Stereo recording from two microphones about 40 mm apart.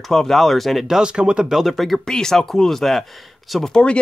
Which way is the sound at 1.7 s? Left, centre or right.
Centre.